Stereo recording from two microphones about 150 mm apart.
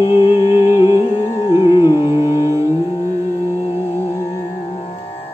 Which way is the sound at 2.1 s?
20° right (ahead or behind).